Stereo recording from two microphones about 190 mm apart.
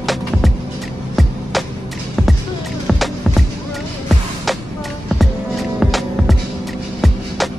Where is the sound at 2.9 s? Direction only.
Centre (ahead or behind).